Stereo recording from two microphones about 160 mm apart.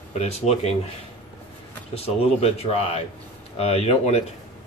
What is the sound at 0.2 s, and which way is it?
Speech, 40° left (ahead or behind).